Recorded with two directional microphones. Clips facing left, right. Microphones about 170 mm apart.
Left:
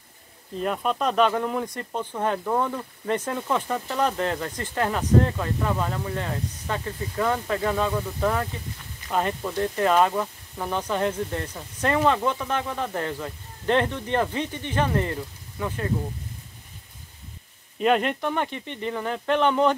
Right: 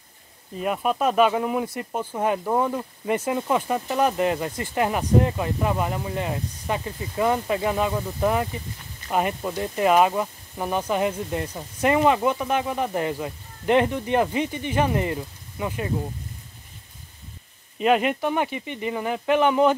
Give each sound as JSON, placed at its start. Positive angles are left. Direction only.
{"t": 0.6, "sound": "speech", "side_deg": -10}
{"t": 17.7, "sound": "speech", "side_deg": -5}